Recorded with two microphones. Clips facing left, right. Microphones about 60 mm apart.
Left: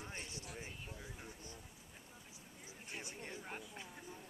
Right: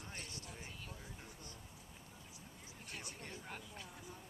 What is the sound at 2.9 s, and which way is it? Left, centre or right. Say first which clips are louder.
Speech: left 2 dB; left.